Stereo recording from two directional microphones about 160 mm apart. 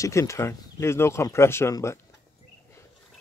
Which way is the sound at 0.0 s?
20° left (ahead or behind).